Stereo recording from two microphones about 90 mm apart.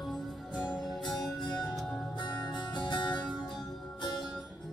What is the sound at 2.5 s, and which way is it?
Music, 55° left (ahead or behind).